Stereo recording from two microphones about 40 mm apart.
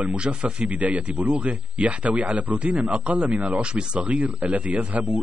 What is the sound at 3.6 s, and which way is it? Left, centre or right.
Speech, right.